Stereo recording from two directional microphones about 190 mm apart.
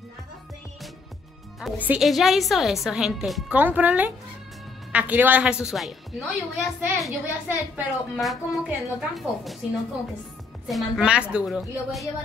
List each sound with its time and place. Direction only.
1.6 s a woman's voice: 5° right (ahead or behind)
10.7 s a woman's voice: centre (ahead or behind)